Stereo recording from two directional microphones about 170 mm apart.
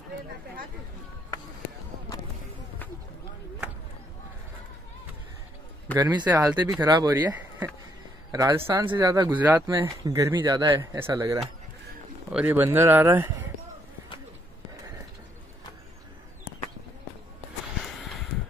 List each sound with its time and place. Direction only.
5.9 s speech: 20° right (ahead or behind)